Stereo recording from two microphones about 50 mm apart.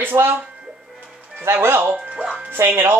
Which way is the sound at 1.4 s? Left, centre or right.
Right.